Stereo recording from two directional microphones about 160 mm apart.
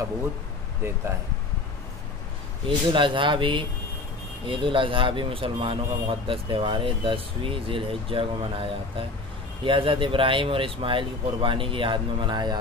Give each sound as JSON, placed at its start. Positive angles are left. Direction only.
{"t": 2.6, "sound": "speech", "side_deg": -30}